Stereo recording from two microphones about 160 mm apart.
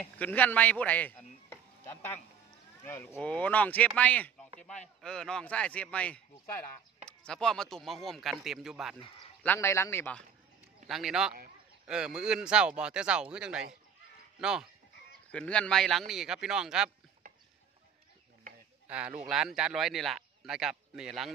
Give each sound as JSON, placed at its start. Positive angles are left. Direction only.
{"t": 0.0, "sound": "a man's voice", "side_deg": 10}
{"t": 9.4, "sound": "speech", "side_deg": 15}
{"t": 10.9, "sound": "a man's voice", "side_deg": 0}
{"t": 15.3, "sound": "a man's voice", "side_deg": 5}
{"t": 18.9, "sound": "a man's voice", "side_deg": -10}